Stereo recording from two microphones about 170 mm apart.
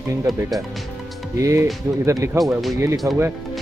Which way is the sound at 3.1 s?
20° right (ahead or behind).